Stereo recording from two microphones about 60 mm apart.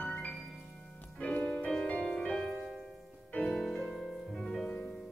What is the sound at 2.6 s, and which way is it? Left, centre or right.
Music, centre.